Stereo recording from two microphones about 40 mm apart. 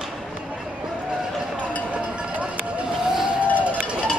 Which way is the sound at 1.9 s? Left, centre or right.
Right.